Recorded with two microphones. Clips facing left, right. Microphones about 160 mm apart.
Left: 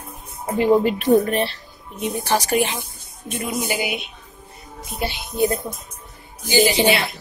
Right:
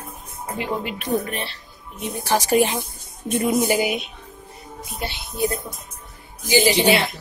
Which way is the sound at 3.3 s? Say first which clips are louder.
Right 6 dB; 40° right (ahead or behind).